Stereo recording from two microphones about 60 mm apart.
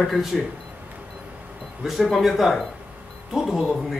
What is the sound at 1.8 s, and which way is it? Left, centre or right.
Speech, centre.